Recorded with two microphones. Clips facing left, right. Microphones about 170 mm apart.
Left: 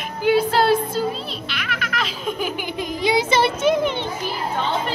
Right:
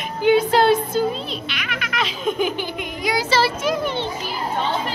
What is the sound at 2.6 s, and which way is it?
Speech, 25° left (ahead or behind).